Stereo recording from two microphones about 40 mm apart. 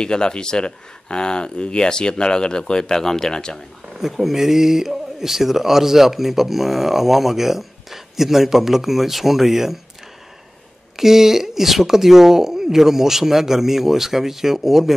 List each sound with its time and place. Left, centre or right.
0.0 s speech: left
3.9 s speech: centre
11.0 s speech: centre